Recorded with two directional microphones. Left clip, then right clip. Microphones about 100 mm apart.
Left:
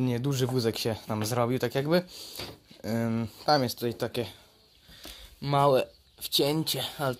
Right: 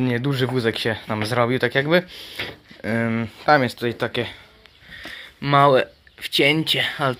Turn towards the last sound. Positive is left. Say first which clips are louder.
# right 10 dB
turn(degrees=10)  # may be behind; listen again after turning